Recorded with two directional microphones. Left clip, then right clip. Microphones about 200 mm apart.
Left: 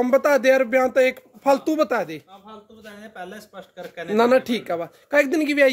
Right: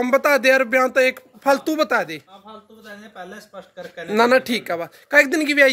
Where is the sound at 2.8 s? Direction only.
20° left (ahead or behind).